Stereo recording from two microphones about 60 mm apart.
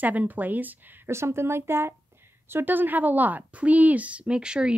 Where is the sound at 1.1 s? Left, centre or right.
Right.